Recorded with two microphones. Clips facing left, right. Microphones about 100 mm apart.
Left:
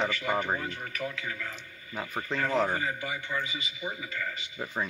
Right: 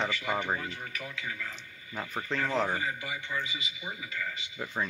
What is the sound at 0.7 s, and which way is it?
Speech, 40° left (ahead or behind).